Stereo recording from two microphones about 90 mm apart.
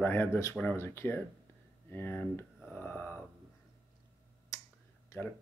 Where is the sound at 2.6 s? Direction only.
20° left (ahead or behind).